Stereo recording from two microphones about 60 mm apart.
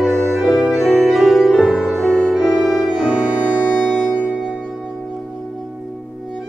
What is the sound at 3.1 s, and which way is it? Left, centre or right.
Music, right.